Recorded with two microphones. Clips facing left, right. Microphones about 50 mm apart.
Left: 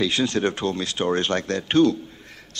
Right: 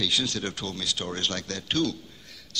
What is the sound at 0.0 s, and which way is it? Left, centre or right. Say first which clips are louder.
A man's voice: left 7 dB; left.